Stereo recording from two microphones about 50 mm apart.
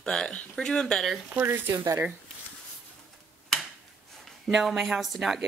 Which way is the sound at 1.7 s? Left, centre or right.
Right.